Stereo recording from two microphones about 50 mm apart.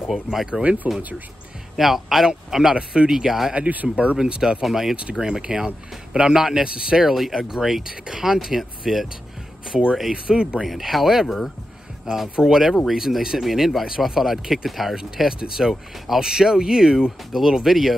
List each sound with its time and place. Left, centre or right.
0.0 s speech: centre
1.8 s speech: centre
3.5 s speech: right
4.2 s speech: centre
10.1 s speech: centre
10.6 s speech: centre
11.2 s speech: centre
12.1 s speech: centre